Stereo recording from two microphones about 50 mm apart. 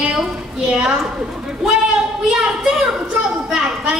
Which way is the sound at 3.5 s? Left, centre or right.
Centre.